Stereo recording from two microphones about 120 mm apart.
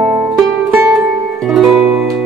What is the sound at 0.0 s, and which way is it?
Music, 15° right (ahead or behind).